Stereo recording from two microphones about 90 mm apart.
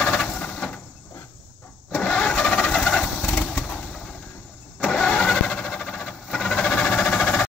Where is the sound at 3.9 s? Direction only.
5° left (ahead or behind).